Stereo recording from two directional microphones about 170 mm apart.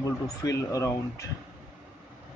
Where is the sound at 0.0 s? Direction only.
20° left (ahead or behind).